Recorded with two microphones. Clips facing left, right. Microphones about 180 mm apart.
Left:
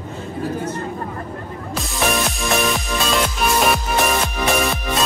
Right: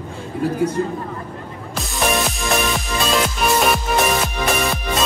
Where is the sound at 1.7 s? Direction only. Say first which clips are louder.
Right 1 dB; centre (ahead or behind).